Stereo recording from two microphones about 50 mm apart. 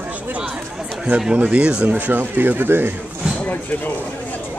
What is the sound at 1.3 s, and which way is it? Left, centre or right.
Speech, right.